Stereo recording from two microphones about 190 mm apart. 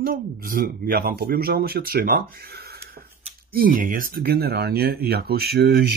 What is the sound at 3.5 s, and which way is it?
Speech, 45° right (ahead or behind).